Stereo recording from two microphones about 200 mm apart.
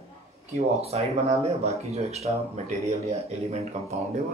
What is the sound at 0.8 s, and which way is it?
Speech, 30° right (ahead or behind).